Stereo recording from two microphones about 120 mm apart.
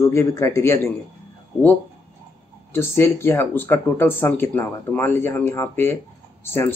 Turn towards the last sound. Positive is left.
turn(degrees=20)  # may be behind; listen again after turning